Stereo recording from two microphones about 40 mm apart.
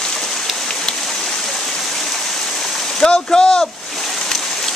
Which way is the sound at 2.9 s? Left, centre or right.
Centre.